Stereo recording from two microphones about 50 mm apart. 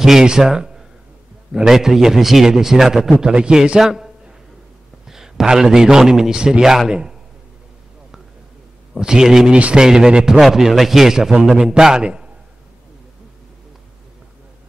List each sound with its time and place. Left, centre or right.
0.0 s a man's voice: centre
8.9 s a man's voice: centre